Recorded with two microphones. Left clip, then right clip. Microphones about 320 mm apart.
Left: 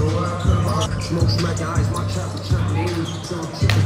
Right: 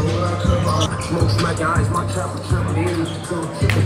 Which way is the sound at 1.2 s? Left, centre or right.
Right.